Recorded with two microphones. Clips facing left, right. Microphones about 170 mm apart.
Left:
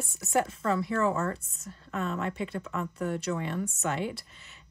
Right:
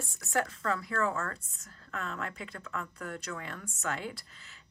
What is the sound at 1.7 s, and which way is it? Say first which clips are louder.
Speech: left 7 dB; 20° left (ahead or behind).